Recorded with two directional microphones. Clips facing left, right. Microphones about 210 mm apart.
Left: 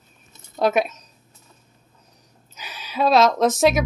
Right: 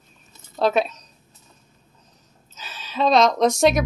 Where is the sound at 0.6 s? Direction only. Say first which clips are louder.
Even; 15° left (ahead or behind).